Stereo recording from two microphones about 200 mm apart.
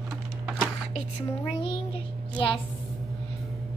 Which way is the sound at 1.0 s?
25° left (ahead or behind).